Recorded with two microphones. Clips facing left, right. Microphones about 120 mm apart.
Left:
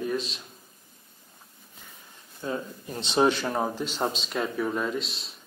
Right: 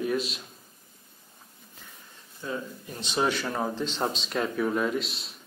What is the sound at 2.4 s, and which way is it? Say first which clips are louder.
Speech: left 2 dB; 25° left (ahead or behind).